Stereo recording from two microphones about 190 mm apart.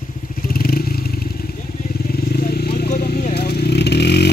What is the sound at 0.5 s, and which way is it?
Vehicle, 55° left (ahead or behind).